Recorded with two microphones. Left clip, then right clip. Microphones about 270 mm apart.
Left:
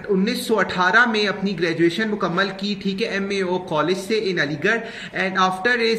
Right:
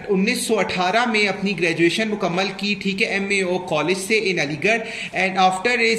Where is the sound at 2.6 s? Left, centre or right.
Left.